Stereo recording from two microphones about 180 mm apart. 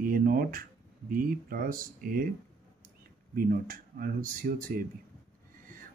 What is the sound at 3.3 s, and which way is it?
Speech, 55° right (ahead or behind).